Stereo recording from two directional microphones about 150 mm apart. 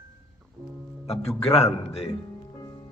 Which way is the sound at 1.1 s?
45° left (ahead or behind).